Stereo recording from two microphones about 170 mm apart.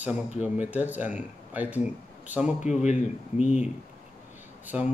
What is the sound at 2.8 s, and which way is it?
Speech, 45° left (ahead or behind).